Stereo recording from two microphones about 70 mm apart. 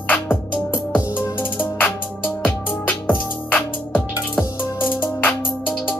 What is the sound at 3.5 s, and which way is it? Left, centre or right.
Music, left.